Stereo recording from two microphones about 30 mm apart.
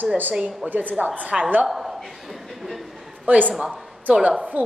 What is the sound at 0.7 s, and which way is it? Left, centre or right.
Speech, right.